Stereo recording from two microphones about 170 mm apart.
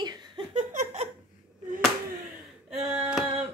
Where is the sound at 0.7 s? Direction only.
50° right (ahead or behind).